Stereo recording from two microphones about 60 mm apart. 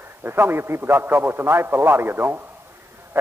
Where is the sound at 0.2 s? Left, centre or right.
Right.